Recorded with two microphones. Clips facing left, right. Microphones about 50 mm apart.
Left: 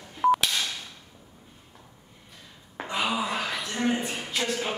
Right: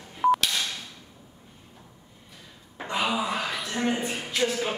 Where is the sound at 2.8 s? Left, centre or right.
Centre.